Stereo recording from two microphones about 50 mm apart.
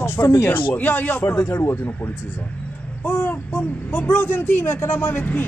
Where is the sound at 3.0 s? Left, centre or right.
Left.